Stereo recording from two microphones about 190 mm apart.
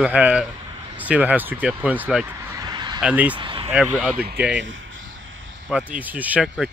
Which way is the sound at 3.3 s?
25° right (ahead or behind).